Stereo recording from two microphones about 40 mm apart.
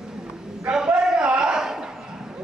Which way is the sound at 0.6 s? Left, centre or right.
Centre.